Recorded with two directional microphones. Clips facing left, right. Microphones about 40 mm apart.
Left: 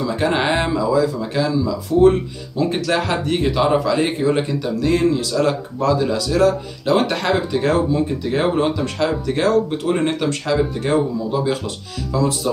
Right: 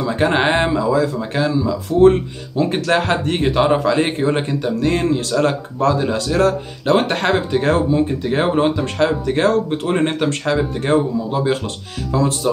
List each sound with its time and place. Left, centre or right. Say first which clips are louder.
0.0 s speech: right 2 dB; right